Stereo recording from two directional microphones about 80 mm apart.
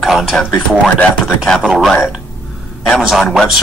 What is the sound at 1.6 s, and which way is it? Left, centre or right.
Speech, centre.